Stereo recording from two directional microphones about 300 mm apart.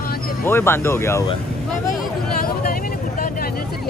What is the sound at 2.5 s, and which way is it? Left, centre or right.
Vehicle, left.